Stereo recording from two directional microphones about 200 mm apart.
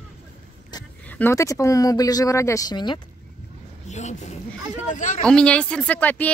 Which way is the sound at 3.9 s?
35° left (ahead or behind).